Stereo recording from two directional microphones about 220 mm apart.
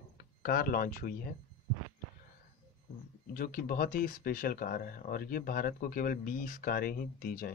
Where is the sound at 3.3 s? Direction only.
40° left (ahead or behind).